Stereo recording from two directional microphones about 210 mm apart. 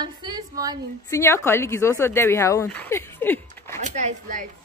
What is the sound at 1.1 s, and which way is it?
A woman's voice, 15° left (ahead or behind).